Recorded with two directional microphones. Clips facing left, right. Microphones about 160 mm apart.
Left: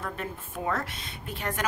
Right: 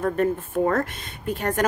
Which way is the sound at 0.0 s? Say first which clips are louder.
Right 13 dB; 50° right (ahead or behind).